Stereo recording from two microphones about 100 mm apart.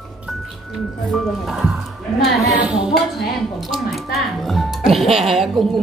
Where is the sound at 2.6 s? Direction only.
5° right (ahead or behind).